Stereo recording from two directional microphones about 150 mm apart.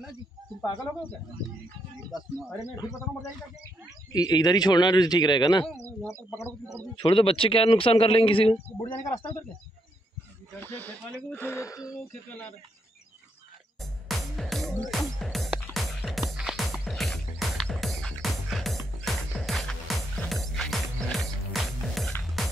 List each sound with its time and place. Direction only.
2.7 s a man's voice: 25° left (ahead or behind)
6.0 s speech: 15° left (ahead or behind)
7.0 s a man's voice: 35° left (ahead or behind)
10.5 s speech: 15° left (ahead or behind)
14.0 s music: centre (ahead or behind)